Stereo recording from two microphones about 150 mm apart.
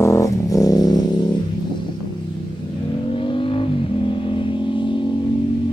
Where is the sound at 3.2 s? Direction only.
35° left (ahead or behind).